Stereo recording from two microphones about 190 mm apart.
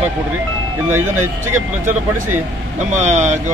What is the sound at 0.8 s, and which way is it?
Speech, 10° right (ahead or behind).